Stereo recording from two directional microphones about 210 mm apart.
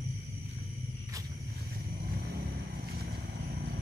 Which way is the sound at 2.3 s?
45° right (ahead or behind).